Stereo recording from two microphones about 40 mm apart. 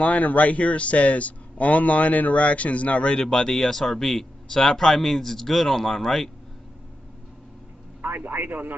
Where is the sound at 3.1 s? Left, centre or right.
Centre.